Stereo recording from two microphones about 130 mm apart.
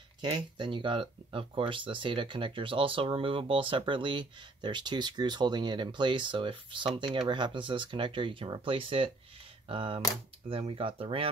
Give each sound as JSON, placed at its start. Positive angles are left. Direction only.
{"t": 0.2, "sound": "speech", "side_deg": -40}